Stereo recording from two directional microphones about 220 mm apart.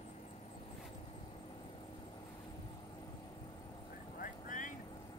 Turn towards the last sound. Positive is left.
turn(degrees=35)  # may be behind; listen again after turning